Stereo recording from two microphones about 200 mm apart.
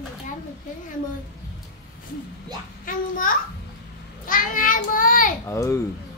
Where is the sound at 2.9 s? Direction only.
45° left (ahead or behind).